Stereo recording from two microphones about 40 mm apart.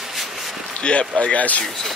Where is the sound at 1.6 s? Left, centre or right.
Centre.